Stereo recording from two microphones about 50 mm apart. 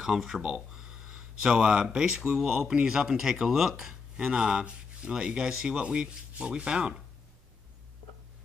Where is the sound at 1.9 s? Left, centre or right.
Centre.